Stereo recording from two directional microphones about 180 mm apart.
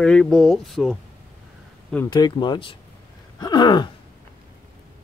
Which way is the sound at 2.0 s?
25° left (ahead or behind).